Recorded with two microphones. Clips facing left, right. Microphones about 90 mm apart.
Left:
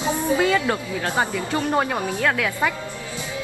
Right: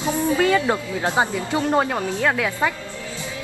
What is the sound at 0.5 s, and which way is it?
A woman's voice, 20° right (ahead or behind).